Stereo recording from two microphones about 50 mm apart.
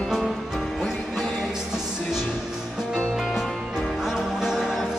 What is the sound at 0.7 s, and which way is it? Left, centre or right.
Music, centre.